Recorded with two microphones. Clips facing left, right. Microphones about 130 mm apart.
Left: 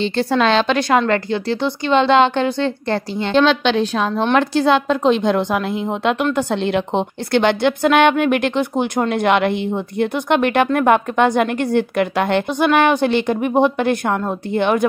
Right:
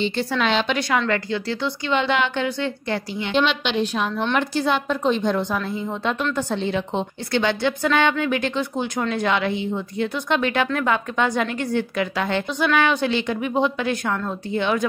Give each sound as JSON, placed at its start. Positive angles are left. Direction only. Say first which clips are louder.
{"t": 0.0, "sound": "a woman's voice", "louder": "left 6 dB", "side_deg": 90}
{"t": 1.0, "sound": "speech", "louder": "left 5 dB", "side_deg": 25}
{"t": 4.3, "sound": "a woman's voice", "louder": "left 8 dB", "side_deg": 90}